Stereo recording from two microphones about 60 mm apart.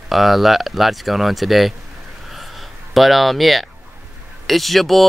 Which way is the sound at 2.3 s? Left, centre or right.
Centre.